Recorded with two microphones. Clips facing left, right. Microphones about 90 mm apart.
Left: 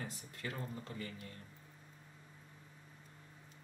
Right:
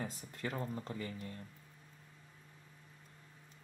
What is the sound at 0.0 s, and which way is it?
Speech, 30° right (ahead or behind).